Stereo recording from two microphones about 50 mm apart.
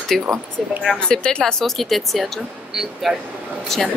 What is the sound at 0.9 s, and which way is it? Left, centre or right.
Speech, centre.